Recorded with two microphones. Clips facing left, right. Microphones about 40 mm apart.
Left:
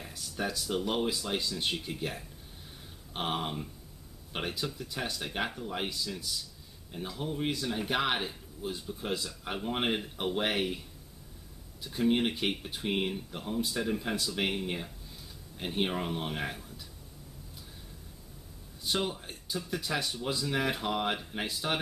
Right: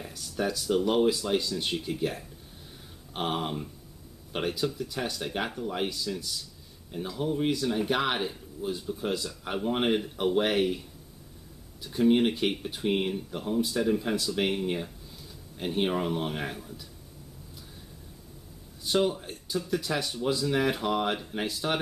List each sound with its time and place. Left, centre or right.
0.0 s speech: centre
18.9 s speech: centre